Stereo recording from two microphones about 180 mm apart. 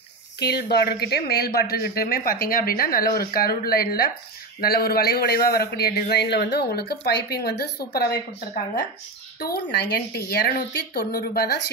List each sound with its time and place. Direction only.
0.4 s speech: 65° left (ahead or behind)
9.4 s speech: 65° left (ahead or behind)